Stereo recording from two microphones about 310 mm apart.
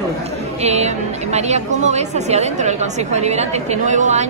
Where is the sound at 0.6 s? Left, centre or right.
Right.